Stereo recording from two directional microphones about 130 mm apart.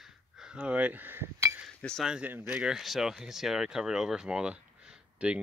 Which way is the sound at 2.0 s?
10° right (ahead or behind).